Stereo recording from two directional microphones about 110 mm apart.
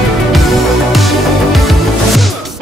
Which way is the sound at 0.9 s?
Centre (ahead or behind).